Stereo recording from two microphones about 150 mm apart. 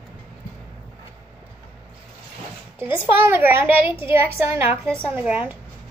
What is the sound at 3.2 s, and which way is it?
A child's voice, 15° right (ahead or behind).